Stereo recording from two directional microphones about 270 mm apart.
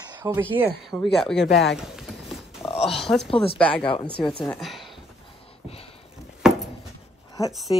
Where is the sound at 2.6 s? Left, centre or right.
Centre.